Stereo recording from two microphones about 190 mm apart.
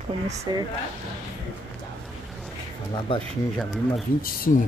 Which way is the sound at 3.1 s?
25° left (ahead or behind).